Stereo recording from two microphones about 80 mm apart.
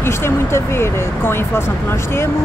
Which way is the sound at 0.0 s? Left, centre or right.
Left.